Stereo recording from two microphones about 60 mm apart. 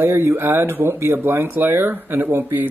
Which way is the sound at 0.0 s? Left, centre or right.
Right.